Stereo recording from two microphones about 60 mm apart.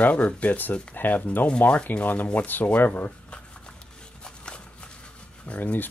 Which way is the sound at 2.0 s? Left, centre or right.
Left.